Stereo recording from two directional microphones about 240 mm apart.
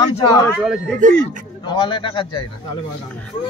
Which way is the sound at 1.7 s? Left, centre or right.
Centre.